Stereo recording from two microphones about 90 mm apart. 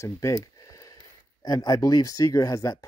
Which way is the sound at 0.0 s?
35° left (ahead or behind).